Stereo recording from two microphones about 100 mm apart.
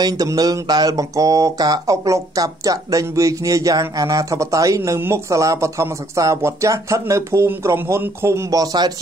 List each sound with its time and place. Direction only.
0.0 s speech: 35° right (ahead or behind)